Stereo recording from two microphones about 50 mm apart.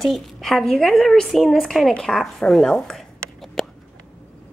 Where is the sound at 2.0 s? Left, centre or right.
Centre.